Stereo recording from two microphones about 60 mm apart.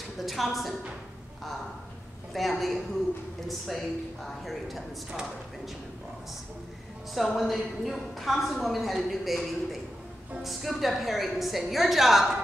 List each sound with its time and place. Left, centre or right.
0.2 s a woman's voice: centre
2.3 s a woman's voice: centre
7.2 s a woman's voice: centre